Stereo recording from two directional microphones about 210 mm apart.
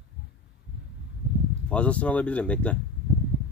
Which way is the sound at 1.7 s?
5° left (ahead or behind).